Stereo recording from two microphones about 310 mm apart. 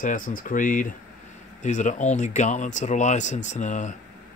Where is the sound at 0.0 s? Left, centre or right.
Left.